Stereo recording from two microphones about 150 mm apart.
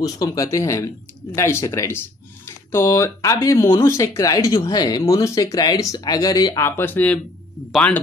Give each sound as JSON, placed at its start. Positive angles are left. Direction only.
{"t": 0.0, "sound": "speech", "side_deg": 25}